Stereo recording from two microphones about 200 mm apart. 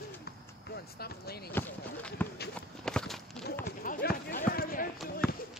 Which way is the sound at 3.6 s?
45° left (ahead or behind).